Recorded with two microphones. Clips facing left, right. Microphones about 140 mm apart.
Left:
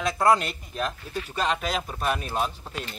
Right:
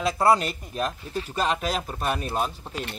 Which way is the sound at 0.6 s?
40° right (ahead or behind).